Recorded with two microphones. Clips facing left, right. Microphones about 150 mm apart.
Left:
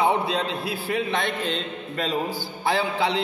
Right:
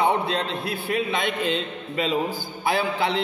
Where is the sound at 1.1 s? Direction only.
10° right (ahead or behind).